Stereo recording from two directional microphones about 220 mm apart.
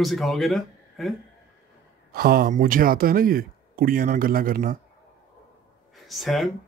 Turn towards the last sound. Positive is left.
turn(degrees=0)  # may be behind; listen again after turning